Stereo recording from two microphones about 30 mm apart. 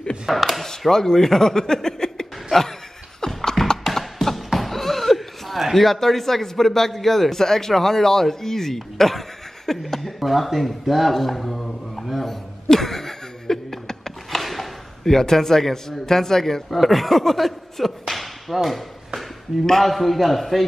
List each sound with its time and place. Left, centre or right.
0.3 s a man's voice: centre
0.7 s speech: centre
3.2 s beatboxing: left
3.8 s a sound: centre
4.6 s speech: centre
10.2 s a sound: centre
15.0 s speech: centre
16.7 s a man's voice: centre
17.2 s whip: centre
19.8 s a man's voice: centre